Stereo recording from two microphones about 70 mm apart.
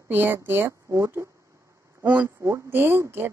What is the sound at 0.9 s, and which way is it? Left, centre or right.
Speech, right.